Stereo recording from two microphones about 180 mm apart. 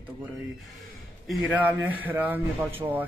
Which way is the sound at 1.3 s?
10° right (ahead or behind).